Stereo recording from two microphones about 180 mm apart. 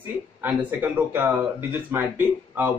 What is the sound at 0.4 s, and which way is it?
Speech, 10° right (ahead or behind).